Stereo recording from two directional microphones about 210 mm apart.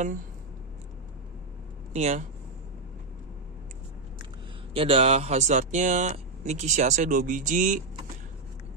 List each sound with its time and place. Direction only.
2.0 s speech: 30° right (ahead or behind)
4.7 s speech: 25° right (ahead or behind)